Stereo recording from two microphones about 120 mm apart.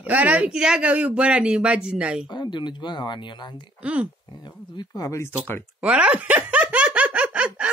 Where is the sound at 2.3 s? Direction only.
40° left (ahead or behind).